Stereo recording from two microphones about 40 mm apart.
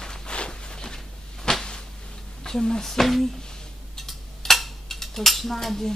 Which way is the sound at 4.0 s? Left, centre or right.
Centre.